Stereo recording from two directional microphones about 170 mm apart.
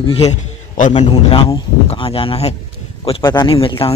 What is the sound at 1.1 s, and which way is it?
A man's voice, 25° left (ahead or behind).